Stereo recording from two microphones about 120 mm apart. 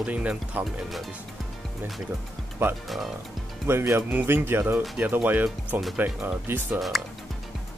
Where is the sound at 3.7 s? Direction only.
20° right (ahead or behind).